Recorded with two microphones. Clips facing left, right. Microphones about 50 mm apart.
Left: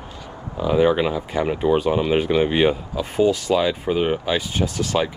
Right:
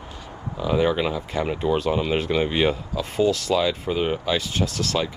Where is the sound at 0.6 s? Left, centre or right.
Centre.